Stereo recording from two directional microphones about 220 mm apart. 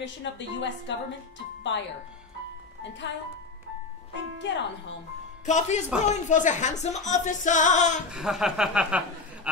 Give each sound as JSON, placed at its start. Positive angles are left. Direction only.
{"t": 0.0, "sound": "a woman's voice", "side_deg": 55}
{"t": 3.0, "sound": "speech", "side_deg": 55}
{"t": 4.4, "sound": "a woman's voice", "side_deg": 55}
{"t": 5.4, "sound": "speech", "side_deg": 30}
{"t": 8.1, "sound": "speech", "side_deg": 0}